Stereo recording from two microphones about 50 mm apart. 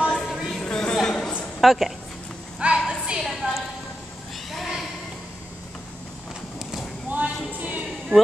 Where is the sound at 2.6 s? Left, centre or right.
Right.